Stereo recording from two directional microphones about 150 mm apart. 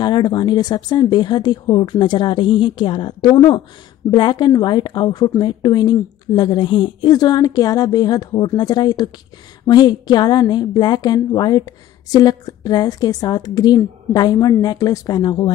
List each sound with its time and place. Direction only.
0.0 s a woman's voice: 30° left (ahead or behind)